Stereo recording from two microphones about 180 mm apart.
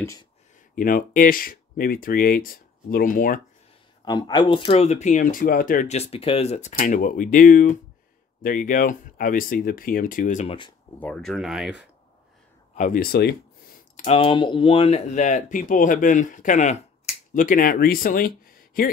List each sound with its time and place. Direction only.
0.7 s speech: 50° left (ahead or behind)
4.0 s speech: 25° left (ahead or behind)
6.8 s speech: 50° left (ahead or behind)
11.0 s speech: 5° left (ahead or behind)
12.7 s speech: 50° left (ahead or behind)
13.9 s speech: 35° left (ahead or behind); by 18.9 s 50° left (ahead or behind)